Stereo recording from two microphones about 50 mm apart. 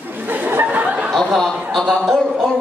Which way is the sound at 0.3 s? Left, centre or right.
Right.